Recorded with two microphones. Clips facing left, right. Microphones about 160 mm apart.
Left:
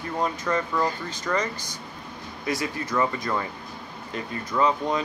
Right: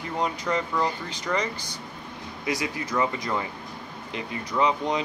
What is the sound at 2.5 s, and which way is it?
Speech, 15° right (ahead or behind).